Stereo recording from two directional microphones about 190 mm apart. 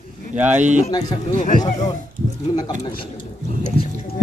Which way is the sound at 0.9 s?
20° left (ahead or behind).